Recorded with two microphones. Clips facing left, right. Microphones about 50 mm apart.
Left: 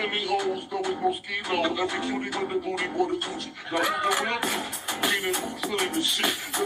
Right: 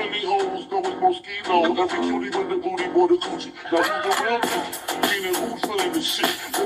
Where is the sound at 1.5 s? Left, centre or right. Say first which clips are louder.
Right 8 dB; right.